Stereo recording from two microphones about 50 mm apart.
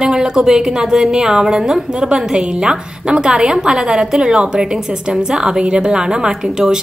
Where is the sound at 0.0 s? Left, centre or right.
Centre.